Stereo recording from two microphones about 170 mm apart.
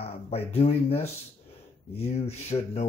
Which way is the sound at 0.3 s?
35° left (ahead or behind).